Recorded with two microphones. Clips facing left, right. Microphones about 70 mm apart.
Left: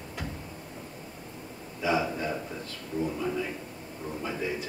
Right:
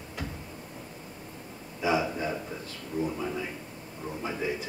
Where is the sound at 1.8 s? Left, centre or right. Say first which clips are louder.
Even; centre.